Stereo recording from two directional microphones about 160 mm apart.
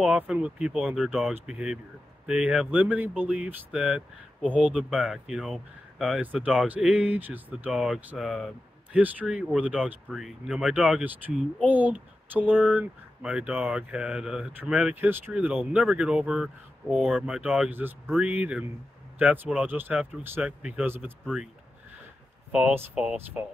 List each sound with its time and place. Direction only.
0.0 s speech: 5° right (ahead or behind)
22.5 s speech: 10° right (ahead or behind)